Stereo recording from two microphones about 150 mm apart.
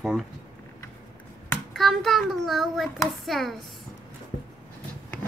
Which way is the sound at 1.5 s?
Centre (ahead or behind).